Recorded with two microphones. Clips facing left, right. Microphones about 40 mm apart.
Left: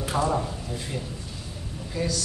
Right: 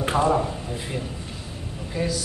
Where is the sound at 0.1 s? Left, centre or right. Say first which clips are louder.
Right 4 dB; centre.